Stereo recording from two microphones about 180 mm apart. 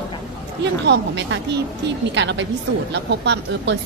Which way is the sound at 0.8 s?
75° right (ahead or behind).